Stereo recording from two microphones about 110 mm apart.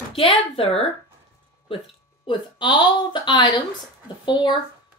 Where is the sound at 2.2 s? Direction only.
45° left (ahead or behind).